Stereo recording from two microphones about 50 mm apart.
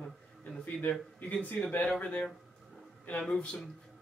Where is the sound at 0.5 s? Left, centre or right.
Left.